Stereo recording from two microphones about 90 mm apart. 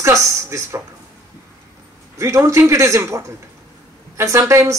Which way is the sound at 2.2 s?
35° right (ahead or behind).